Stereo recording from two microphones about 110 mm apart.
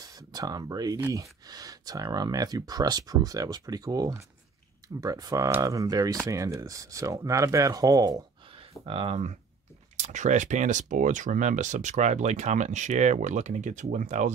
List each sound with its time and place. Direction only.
0.0 s speech: 35° right (ahead or behind)
8.8 s speech: 65° right (ahead or behind); by 9.4 s 80° right
9.9 s speech: 90° right